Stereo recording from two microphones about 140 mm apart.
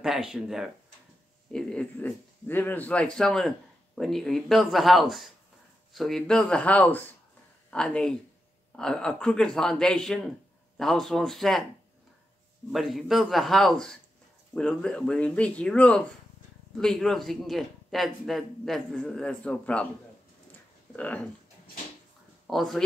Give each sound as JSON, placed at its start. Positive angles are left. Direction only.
{"t": 0.0, "sound": "speech", "side_deg": -5}
{"t": 12.7, "sound": "speech", "side_deg": 0}
{"t": 20.5, "sound": "a sound", "side_deg": 10}
{"t": 22.5, "sound": "speech", "side_deg": 0}